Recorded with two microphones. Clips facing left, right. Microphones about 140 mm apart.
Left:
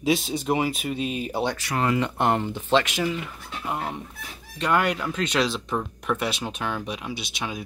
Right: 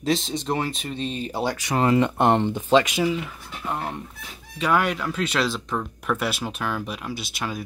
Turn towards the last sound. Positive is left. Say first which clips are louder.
# right 2 dB
turn(degrees=0)  # may be behind; listen again after turning